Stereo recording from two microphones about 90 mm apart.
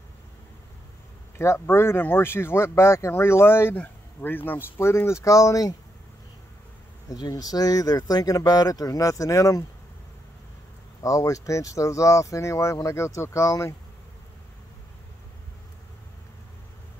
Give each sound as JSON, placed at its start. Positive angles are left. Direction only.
{"t": 1.4, "sound": "speech", "side_deg": 30}
{"t": 7.1, "sound": "speech", "side_deg": 45}
{"t": 11.0, "sound": "speech", "side_deg": 40}